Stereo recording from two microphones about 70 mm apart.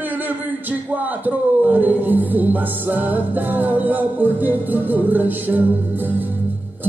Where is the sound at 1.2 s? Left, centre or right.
Right.